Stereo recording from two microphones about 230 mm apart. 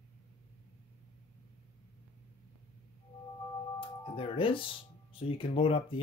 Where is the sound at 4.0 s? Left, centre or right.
Left.